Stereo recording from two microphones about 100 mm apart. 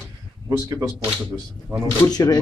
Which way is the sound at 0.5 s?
30° right (ahead or behind).